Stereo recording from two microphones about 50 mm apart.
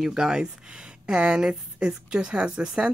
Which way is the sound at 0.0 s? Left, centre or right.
Centre.